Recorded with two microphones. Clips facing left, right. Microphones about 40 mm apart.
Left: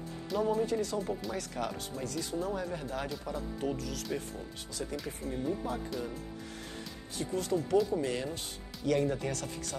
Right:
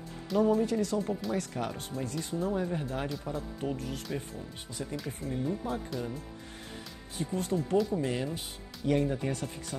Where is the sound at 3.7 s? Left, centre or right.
Right.